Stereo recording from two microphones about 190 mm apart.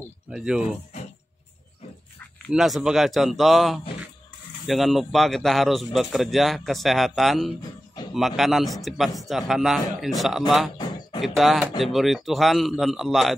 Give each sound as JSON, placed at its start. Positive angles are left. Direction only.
{"t": 0.3, "sound": "a man's voice", "side_deg": -5}
{"t": 2.1, "sound": "a man's voice", "side_deg": 0}
{"t": 10.8, "sound": "a sound", "side_deg": 25}
{"t": 11.2, "sound": "a man's voice", "side_deg": 0}